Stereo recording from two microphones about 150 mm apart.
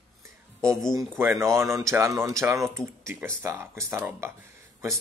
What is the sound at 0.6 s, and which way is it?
Speech, 5° left (ahead or behind).